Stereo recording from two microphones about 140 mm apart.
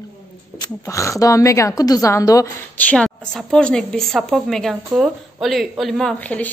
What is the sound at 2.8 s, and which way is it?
A woman's voice, 10° left (ahead or behind).